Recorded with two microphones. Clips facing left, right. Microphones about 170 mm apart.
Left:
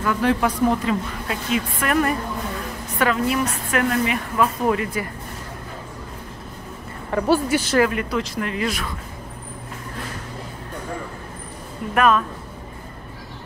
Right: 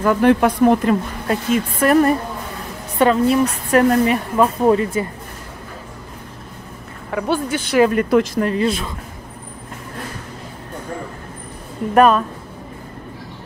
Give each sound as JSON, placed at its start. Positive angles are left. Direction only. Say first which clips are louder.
{"t": 0.0, "sound": "a woman's voice", "louder": "right 6 dB", "side_deg": -50}
{"t": 7.1, "sound": "speech", "louder": "left 2 dB", "side_deg": 0}
{"t": 7.9, "sound": "a woman's voice", "louder": "right 9 dB", "side_deg": -50}
{"t": 11.9, "sound": "a woman's voice", "louder": "right 5 dB", "side_deg": -35}